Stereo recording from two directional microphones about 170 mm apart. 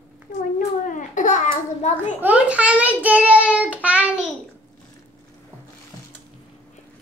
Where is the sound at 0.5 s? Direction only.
50° left (ahead or behind).